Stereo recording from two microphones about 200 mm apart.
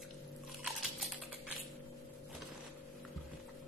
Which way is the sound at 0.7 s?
Centre (ahead or behind).